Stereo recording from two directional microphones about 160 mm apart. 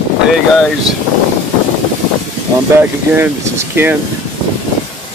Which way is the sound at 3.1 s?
15° right (ahead or behind).